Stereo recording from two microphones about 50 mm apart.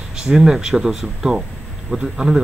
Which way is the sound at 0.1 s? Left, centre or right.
Centre.